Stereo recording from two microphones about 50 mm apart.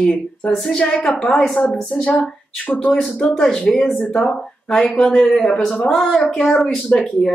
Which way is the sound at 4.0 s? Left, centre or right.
Centre.